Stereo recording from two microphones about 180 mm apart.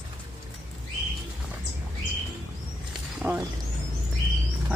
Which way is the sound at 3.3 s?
10° right (ahead or behind).